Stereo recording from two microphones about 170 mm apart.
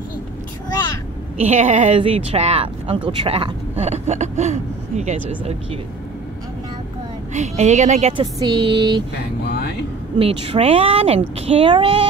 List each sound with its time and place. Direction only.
1.4 s speech: 40° right (ahead or behind)
5.4 s speech: 35° right (ahead or behind)
7.3 s a woman's voice: 40° right (ahead or behind)
8.4 s speech: 25° right (ahead or behind)
9.4 s vehicle: 75° left (ahead or behind)
10.1 s speech: 35° right (ahead or behind)